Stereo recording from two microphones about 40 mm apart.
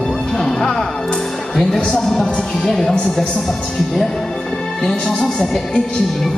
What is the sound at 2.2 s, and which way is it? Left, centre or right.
Speech, centre.